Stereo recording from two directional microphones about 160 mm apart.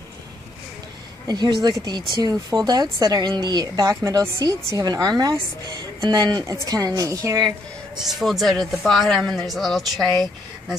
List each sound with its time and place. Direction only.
1.2 s a woman's voice: 25° right (ahead or behind)
7.4 s speech: centre (ahead or behind)